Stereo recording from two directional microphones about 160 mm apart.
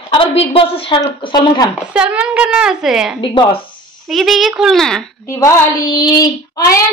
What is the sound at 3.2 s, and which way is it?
Speech, 30° left (ahead or behind).